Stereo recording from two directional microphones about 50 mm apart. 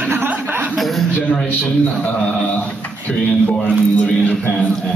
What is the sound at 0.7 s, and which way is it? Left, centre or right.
Chuckle, centre.